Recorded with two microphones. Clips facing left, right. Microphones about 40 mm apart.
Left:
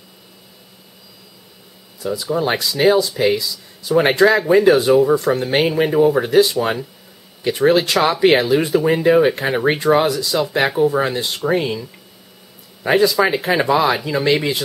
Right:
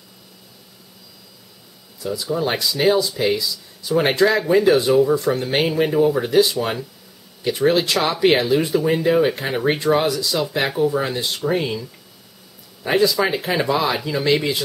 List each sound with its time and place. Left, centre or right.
2.0 s speech: centre
3.9 s speech: left
4.3 s speech: centre
4.9 s speech: left
5.4 s speech: centre